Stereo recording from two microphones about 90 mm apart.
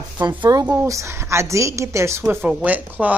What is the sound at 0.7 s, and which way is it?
A woman's voice, 30° right (ahead or behind).